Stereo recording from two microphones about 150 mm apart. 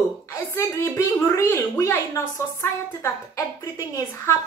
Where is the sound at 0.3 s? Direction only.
20° left (ahead or behind).